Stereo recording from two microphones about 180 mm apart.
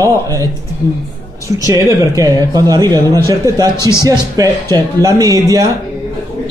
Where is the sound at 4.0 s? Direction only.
20° right (ahead or behind).